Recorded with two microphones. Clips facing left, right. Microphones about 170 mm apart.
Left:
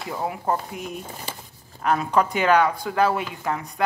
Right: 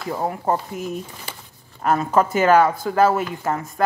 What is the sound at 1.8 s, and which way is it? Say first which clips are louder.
Speech: right 3 dB; 5° right (ahead or behind).